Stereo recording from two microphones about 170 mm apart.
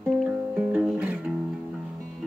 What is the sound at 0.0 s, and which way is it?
Music, 5° right (ahead or behind).